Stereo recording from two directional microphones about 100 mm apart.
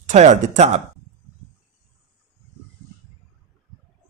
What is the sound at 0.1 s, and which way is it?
Speech, 90° right.